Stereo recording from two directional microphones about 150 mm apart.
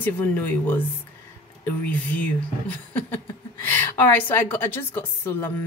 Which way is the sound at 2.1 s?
10° left (ahead or behind).